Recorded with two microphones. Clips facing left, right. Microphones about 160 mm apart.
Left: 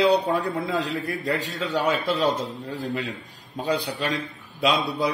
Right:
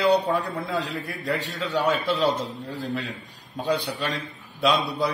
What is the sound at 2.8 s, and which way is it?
Speech, centre (ahead or behind).